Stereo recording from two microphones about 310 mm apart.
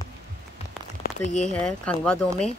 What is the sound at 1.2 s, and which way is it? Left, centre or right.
Speech, left.